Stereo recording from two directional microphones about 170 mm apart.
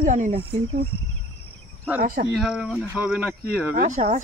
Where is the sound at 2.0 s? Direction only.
55° right (ahead or behind).